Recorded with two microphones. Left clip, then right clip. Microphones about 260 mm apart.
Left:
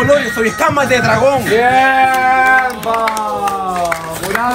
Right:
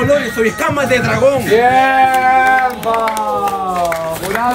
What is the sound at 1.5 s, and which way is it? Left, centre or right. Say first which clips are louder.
Bleat: even; right.